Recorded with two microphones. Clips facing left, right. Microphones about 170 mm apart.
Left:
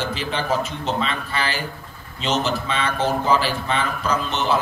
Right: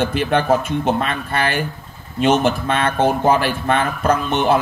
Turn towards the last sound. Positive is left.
turn(degrees=-55)  # may be behind; listen again after turning